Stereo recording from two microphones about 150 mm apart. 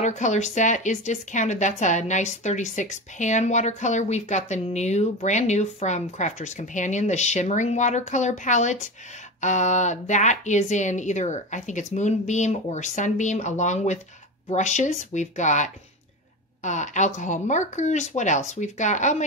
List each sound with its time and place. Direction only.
0.0 s a woman's voice: 50° left (ahead or behind)